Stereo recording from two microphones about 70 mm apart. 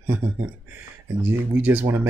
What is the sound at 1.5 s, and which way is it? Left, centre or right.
Speech, right.